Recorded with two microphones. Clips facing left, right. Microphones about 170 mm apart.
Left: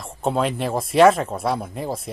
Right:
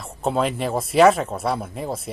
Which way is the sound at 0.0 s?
Centre (ahead or behind).